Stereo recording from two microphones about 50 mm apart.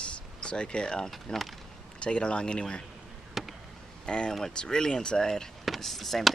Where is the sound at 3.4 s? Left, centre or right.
Centre.